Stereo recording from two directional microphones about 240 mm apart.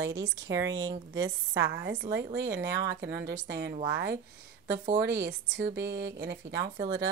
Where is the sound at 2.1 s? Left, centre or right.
Right.